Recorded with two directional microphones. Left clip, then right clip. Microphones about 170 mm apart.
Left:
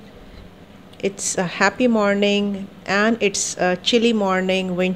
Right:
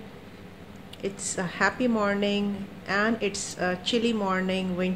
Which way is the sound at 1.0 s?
50° left (ahead or behind).